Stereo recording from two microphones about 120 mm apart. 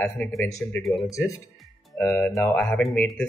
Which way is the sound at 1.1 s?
25° left (ahead or behind).